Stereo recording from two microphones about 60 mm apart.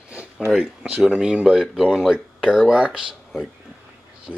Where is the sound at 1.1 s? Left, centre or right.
Centre.